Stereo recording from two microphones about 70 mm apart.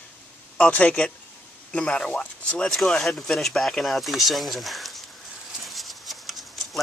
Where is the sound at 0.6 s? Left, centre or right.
Centre.